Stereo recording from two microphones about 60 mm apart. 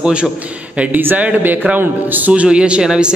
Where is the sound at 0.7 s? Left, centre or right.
Right.